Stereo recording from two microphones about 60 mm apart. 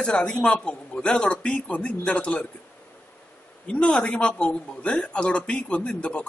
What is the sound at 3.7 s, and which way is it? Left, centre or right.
A man's voice, centre.